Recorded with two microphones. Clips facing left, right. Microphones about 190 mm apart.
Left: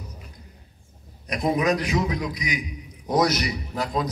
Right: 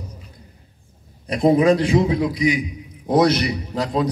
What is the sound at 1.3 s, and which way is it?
A man's voice, 30° right (ahead or behind).